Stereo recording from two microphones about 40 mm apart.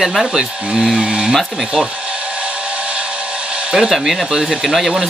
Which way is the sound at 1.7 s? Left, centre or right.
Right.